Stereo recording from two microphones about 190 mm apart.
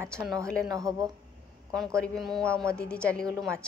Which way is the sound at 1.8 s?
5° left (ahead or behind).